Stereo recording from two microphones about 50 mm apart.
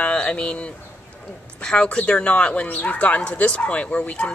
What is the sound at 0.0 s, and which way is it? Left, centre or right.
Speech, left.